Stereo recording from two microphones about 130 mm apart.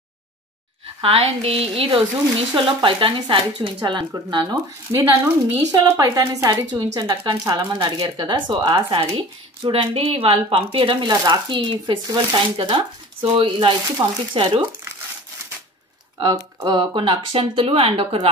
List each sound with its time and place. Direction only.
1.0 s speech: 50° right (ahead or behind)
4.9 s speech: 15° right (ahead or behind)
5.7 s speech: 30° right (ahead or behind)
16.2 s speech: 35° right (ahead or behind)